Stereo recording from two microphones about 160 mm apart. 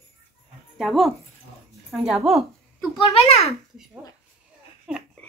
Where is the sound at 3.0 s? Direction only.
40° left (ahead or behind).